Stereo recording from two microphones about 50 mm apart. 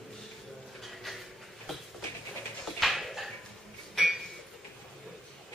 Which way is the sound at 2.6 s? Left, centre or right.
Centre.